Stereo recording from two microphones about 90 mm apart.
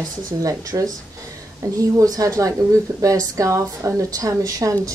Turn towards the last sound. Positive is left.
turn(degrees=-40)  # may be behind; listen again after turning